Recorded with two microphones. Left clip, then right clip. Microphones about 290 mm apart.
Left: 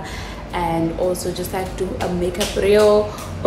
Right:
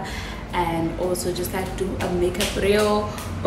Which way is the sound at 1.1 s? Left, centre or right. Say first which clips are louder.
Left 2 dB; centre.